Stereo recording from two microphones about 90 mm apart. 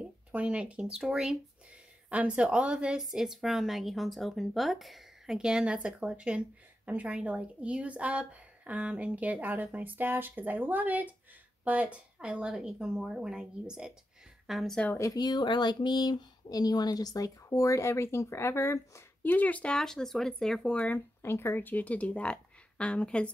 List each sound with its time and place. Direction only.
0.0 s a sound: 15° right (ahead or behind)
0.9 s a woman's voice: 5° right (ahead or behind)
15.1 s speech: 55° left (ahead or behind); by 19.3 s 30° left (ahead or behind)
19.3 s speech: 15° left (ahead or behind)
20.7 s speech: 15° left (ahead or behind)
21.2 s speech: 25° left (ahead or behind)